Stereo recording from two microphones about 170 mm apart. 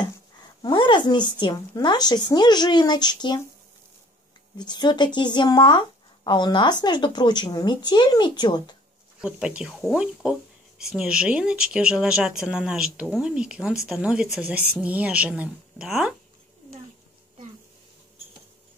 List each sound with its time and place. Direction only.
0.6 s speech: 25° left (ahead or behind)
4.6 s speech: 25° left (ahead or behind)
9.2 s speech: 5° right (ahead or behind)